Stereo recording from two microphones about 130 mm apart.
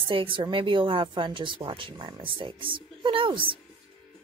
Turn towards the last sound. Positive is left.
turn(degrees=-40)  # may be behind; listen again after turning